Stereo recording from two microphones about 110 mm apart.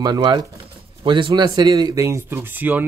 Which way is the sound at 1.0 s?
50° right (ahead or behind).